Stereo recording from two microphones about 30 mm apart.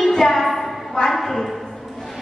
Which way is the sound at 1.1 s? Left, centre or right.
Centre.